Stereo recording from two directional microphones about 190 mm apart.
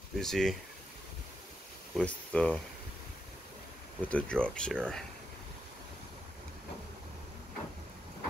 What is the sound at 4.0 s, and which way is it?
Speech, 5° left (ahead or behind).